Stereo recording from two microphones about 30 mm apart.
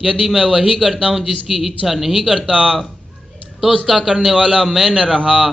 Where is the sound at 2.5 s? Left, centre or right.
Right.